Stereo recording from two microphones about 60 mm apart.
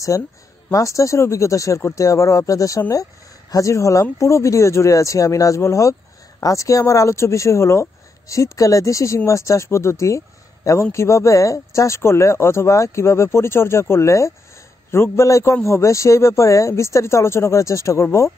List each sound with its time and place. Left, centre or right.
0.1 s a man's voice: left